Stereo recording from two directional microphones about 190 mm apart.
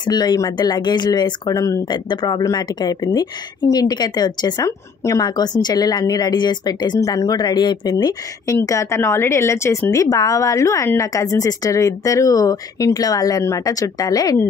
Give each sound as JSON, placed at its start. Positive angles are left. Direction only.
{"t": 0.0, "sound": "speech", "side_deg": 20}